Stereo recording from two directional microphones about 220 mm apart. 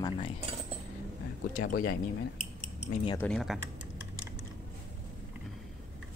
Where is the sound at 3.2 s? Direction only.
5° left (ahead or behind).